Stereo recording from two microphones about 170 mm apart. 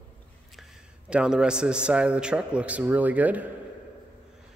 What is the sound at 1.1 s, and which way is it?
A man's voice, 5° right (ahead or behind).